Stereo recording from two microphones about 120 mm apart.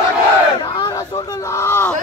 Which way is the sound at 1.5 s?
20° left (ahead or behind).